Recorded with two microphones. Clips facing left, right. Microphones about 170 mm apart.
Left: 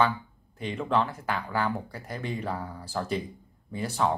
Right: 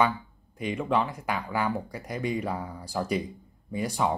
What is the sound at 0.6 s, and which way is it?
Speech, 5° right (ahead or behind).